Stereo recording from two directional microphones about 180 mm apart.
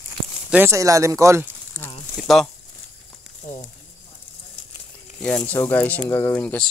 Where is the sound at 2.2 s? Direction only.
Centre (ahead or behind).